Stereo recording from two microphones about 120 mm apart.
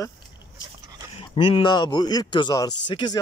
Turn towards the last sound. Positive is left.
turn(degrees=40)  # may be behind; listen again after turning